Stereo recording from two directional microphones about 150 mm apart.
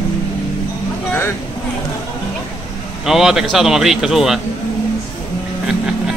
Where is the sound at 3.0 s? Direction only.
5° right (ahead or behind).